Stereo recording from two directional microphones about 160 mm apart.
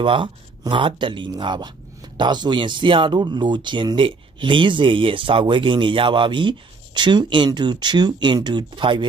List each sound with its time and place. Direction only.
0.0 s speech: 30° right (ahead or behind)